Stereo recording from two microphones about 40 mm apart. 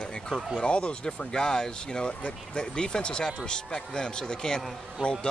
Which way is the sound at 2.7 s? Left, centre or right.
Left.